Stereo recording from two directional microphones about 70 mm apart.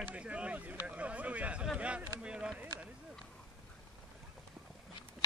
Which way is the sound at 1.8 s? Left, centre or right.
Centre.